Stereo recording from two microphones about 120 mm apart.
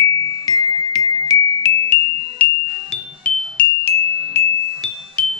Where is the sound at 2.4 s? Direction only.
10° left (ahead or behind).